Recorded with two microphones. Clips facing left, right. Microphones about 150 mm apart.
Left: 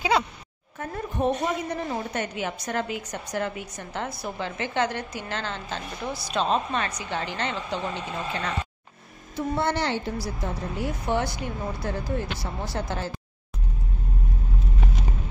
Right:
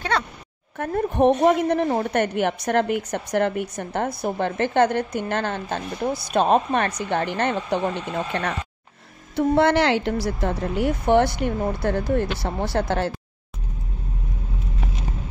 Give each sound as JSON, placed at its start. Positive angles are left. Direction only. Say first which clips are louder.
{"t": 0.7, "sound": "a woman's voice", "louder": "right 8 dB", "side_deg": -65}